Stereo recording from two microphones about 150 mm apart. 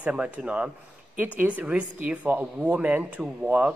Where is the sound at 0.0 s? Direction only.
10° right (ahead or behind).